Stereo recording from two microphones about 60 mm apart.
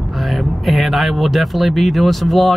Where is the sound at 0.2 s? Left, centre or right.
Centre.